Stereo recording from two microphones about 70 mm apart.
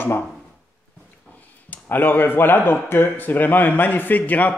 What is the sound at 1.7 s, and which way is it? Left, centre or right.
Speech, left.